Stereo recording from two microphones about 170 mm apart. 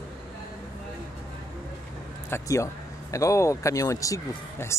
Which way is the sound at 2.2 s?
15° left (ahead or behind).